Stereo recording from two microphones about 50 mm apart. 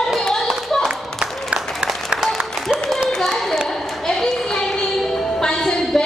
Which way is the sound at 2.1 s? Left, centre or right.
Centre.